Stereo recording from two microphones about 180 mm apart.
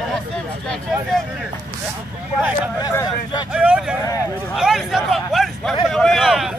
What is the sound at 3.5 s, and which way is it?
Speech, 5° right (ahead or behind).